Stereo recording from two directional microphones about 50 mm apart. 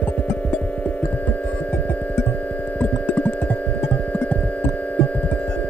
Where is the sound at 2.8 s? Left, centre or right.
Left.